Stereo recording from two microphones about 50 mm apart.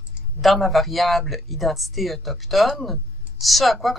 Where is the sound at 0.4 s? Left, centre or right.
Centre.